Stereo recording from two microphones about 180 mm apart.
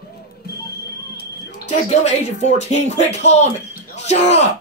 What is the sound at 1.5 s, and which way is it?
Speech, 40° left (ahead or behind).